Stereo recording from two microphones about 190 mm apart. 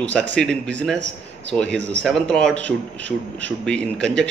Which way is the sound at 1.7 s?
65° right (ahead or behind).